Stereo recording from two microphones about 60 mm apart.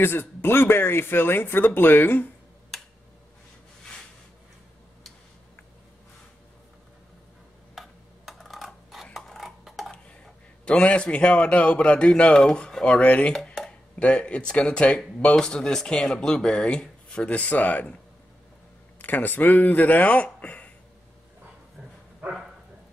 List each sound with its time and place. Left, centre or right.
0.0 s speech: left
7.7 s a sound: centre
9.0 s dishes: centre
9.8 s speech: centre
18.9 s speech: left